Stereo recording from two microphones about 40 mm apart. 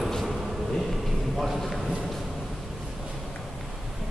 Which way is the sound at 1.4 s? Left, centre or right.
Centre.